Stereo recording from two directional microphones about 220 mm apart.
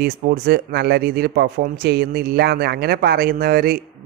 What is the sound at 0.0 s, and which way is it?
Speech, 45° right (ahead or behind).